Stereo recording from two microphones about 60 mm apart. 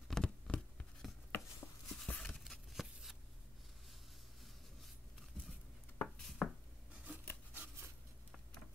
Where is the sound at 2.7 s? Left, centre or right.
Centre.